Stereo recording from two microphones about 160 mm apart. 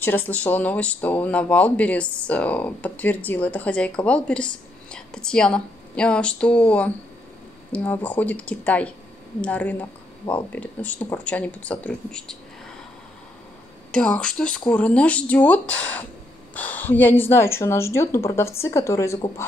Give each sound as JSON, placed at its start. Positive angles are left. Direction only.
{"t": 0.0, "sound": "speech", "side_deg": 10}
{"t": 13.9, "sound": "a woman's voice", "side_deg": 5}